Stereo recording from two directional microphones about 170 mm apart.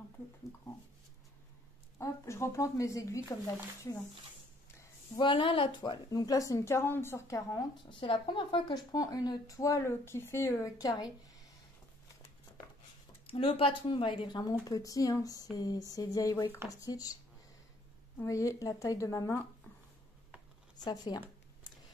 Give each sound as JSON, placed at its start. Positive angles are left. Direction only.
{"t": 2.0, "sound": "a woman's voice", "side_deg": 15}
{"t": 4.6, "sound": "a sound", "side_deg": 15}
{"t": 5.2, "sound": "a woman's voice", "side_deg": 30}
{"t": 13.3, "sound": "a woman's voice", "side_deg": 30}
{"t": 18.2, "sound": "a woman's voice", "side_deg": 15}
{"t": 20.8, "sound": "a woman's voice", "side_deg": 25}